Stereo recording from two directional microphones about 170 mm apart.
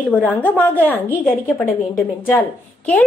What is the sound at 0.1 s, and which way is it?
A woman's voice, 5° left (ahead or behind).